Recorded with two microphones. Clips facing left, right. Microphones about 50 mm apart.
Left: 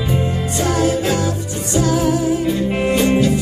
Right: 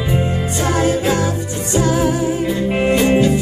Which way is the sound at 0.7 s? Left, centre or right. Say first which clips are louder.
Right 1 dB; right.